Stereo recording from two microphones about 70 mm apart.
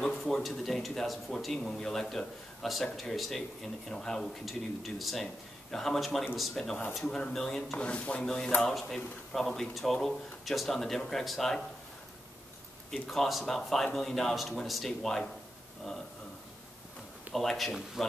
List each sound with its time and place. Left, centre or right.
0.0 s speech: centre
7.2 s speech: centre
7.8 s speech: centre
8.7 s speech: centre
12.9 s speech: centre
17.3 s speech: centre